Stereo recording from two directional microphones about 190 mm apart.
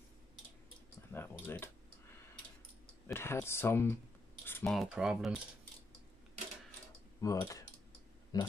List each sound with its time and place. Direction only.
1.1 s typing: 10° left (ahead or behind)
3.1 s speech: 15° left (ahead or behind)
4.5 s typing: 10° left (ahead or behind)
4.7 s speech: 5° right (ahead or behind)
7.2 s mechanisms: 15° left (ahead or behind)
8.3 s speech: 20° left (ahead or behind)